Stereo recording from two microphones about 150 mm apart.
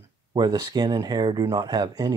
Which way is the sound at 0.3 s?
30° right (ahead or behind).